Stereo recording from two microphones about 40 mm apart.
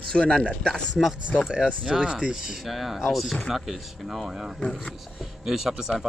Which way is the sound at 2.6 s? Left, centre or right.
Centre.